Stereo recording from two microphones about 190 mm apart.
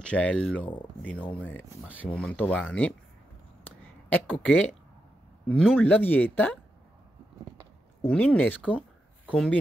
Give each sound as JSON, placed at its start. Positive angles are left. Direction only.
{"t": 0.0, "sound": "speech", "side_deg": 5}
{"t": 3.6, "sound": "a sound", "side_deg": 5}
{"t": 5.6, "sound": "speech", "side_deg": 5}
{"t": 8.0, "sound": "speech", "side_deg": 5}